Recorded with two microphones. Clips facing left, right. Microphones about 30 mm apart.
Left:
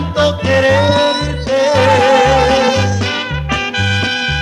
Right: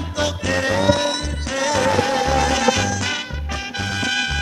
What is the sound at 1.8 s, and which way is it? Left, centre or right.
Music, left.